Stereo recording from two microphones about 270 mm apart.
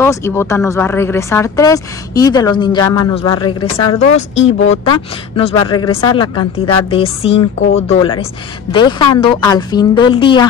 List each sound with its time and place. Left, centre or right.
0.0 s speech: centre
4.8 s speech: centre